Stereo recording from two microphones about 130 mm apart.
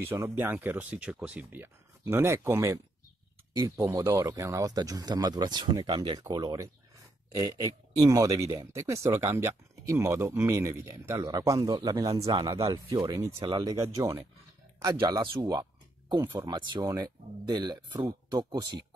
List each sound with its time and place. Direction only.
0.0 s speech: 20° right (ahead or behind)
13.4 s speech: 45° right (ahead or behind)
13.7 s speech: 25° right (ahead or behind)